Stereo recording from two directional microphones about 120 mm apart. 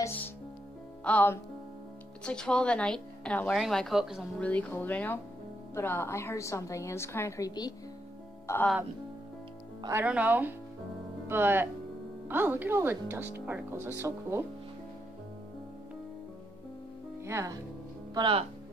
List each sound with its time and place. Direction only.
0.0 s music: 15° left (ahead or behind)
1.0 s a woman's voice: 15° left (ahead or behind); by 4.3 s 5° right (ahead or behind)
4.4 s a woman's voice: 10° left (ahead or behind)
10.0 s speech: 15° right (ahead or behind)
17.2 s speech: 25° right (ahead or behind)
18.1 s speech: 40° right (ahead or behind)